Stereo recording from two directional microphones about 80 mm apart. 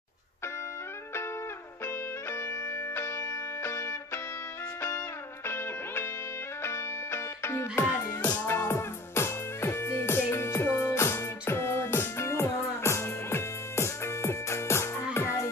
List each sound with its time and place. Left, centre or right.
2.3 s music: left
5.5 s music: left
8.1 s music: centre
8.5 s music: left